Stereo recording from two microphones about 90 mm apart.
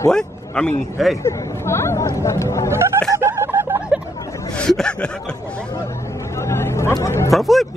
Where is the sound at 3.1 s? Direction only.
30° right (ahead or behind).